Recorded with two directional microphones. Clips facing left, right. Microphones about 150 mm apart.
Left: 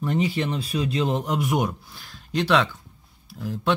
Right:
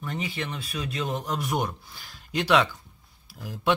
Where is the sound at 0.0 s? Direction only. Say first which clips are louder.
Left 8 dB; 30° left (ahead or behind).